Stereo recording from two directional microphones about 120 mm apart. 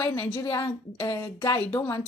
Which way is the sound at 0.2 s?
25° left (ahead or behind).